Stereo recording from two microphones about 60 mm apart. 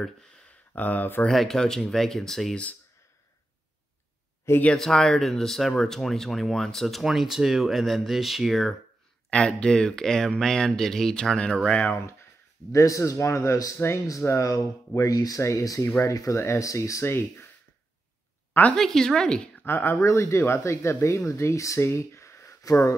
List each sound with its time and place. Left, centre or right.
0.7 s speech: left
1.2 s speech: centre
4.7 s speech: centre
9.6 s speech: centre
12.7 s a man's voice: left
14.2 s speech: left
15.0 s a man's voice: left
17.0 s speech: left
18.5 s speech: left
18.8 s speech: centre
19.6 s speech: left
20.0 s a man's voice: left
22.7 s speech: left